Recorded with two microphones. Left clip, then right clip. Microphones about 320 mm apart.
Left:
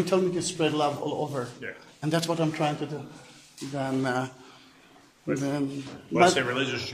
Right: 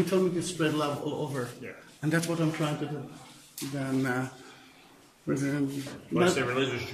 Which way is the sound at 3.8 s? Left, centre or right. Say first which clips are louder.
Left 3 dB; centre.